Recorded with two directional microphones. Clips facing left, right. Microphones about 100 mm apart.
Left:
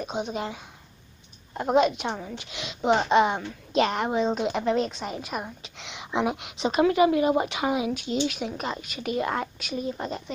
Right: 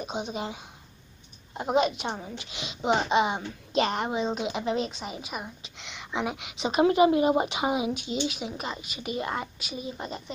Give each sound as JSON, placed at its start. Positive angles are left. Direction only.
{"t": 0.0, "sound": "speech", "side_deg": -10}
{"t": 1.6, "sound": "a woman's voice", "side_deg": -5}
{"t": 2.0, "sound": "speech", "side_deg": -20}
{"t": 2.7, "sound": "a woman's voice", "side_deg": -5}
{"t": 6.7, "sound": "speech", "side_deg": -25}